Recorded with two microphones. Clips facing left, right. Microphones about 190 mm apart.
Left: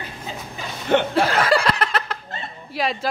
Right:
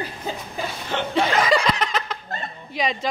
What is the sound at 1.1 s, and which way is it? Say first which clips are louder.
Laughter: left 1 dB; 5° left (ahead or behind).